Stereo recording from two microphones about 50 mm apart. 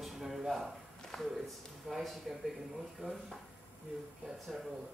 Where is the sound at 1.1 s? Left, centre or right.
Centre.